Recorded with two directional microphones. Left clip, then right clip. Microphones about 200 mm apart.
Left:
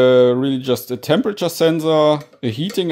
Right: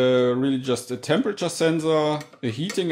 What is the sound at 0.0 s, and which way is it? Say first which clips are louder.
Speech: left 8 dB; 40° left (ahead or behind).